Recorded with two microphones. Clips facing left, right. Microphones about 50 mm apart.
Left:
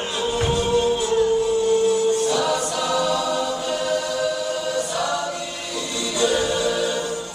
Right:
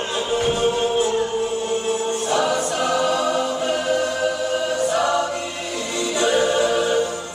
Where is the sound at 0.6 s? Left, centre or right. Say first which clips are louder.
Right 1 dB; right.